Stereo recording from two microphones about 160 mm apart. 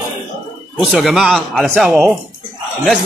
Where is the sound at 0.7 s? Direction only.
Centre (ahead or behind).